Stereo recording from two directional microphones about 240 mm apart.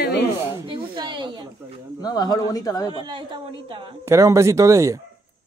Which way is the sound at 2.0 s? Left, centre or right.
Centre.